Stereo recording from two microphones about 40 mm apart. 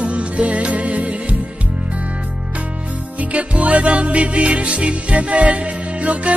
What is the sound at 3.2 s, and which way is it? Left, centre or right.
Music, right.